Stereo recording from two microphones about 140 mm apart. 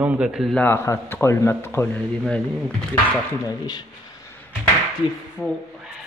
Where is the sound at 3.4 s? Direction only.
30° left (ahead or behind).